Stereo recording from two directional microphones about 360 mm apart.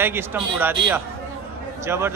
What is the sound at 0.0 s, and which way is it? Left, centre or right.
A man's voice, centre.